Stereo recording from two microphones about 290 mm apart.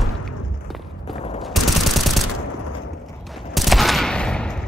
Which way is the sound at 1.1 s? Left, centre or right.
Left.